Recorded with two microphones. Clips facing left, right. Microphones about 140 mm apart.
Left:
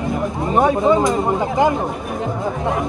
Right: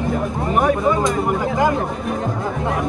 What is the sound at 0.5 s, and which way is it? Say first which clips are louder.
Speech: left 3 dB; 25° left (ahead or behind).